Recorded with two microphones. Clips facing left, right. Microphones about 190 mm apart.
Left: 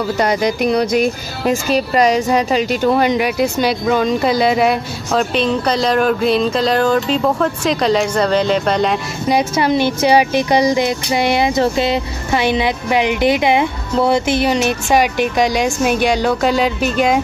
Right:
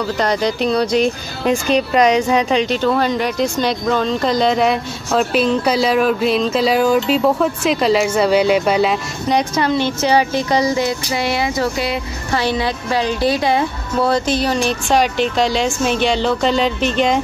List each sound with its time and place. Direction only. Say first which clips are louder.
0.2 s speech: left 2 dB; 10° left (ahead or behind); by 8.9 s 10° right (ahead or behind)
9.3 s speech: left 2 dB; 5° left (ahead or behind)